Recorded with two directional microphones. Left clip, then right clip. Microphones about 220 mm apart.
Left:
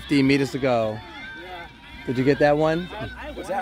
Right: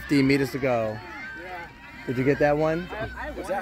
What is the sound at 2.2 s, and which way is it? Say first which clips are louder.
Speech: left 3 dB; 20° left (ahead or behind).